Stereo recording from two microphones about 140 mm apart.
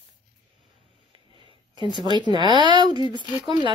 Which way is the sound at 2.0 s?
30° right (ahead or behind).